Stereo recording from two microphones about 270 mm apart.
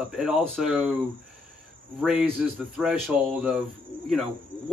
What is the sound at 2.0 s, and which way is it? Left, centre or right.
Speech, centre.